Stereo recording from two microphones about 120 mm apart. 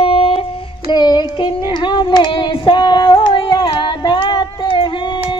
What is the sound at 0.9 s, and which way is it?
Child singing, 35° left (ahead or behind).